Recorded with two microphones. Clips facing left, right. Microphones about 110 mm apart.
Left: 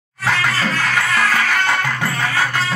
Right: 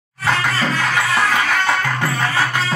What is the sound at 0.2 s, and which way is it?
Music, centre (ahead or behind).